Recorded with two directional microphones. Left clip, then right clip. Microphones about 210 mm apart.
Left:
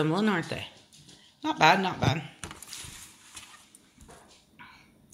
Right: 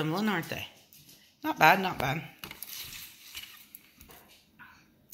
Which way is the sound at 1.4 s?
Centre (ahead or behind).